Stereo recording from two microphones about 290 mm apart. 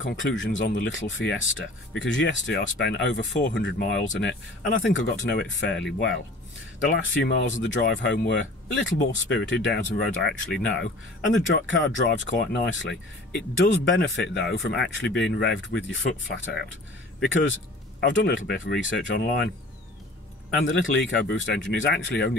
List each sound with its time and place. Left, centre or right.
0.0 s speech: left
6.8 s speech: left
7.6 s speech: left
11.5 s speech: left
20.6 s speech: left
21.4 s speech: left